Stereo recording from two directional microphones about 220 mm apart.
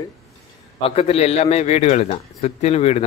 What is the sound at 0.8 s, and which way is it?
A man's voice, 25° left (ahead or behind).